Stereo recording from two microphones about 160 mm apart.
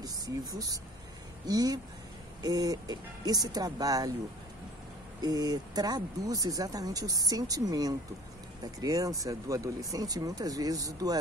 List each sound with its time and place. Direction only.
0.0 s speech: 25° right (ahead or behind)
5.2 s speech: 25° right (ahead or behind)